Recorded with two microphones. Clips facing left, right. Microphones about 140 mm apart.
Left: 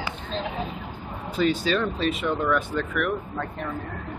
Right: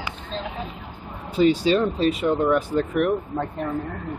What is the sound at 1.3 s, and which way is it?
Speech, 30° right (ahead or behind).